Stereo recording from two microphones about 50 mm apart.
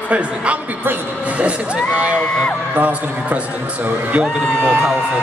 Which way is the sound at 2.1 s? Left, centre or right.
Left.